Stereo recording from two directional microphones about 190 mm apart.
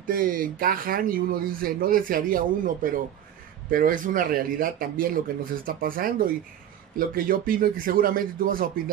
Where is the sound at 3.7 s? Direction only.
45° right (ahead or behind).